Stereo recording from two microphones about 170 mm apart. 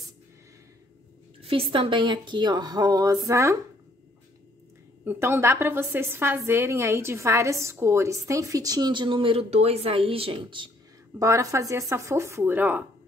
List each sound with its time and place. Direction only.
1.4 s a woman's voice: 35° right (ahead or behind)
5.0 s a woman's voice: 15° right (ahead or behind); by 10.7 s 30° right (ahead or behind)
11.1 s a woman's voice: 15° right (ahead or behind)